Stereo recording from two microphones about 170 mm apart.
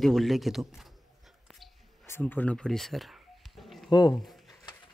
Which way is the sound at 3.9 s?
25° left (ahead or behind).